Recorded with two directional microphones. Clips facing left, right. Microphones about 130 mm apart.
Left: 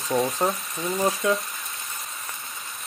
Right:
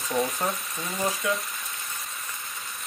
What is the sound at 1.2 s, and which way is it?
Speech, 25° left (ahead or behind).